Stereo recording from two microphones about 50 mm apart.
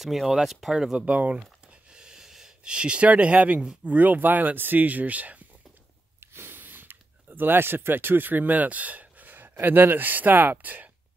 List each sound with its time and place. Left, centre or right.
0.0 s speech: centre
1.0 s speech: right
2.0 s a sound: centre
3.8 s speech: right
6.3 s speech: right